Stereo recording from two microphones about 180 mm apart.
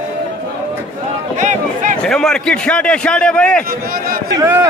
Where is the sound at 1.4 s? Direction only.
45° right (ahead or behind).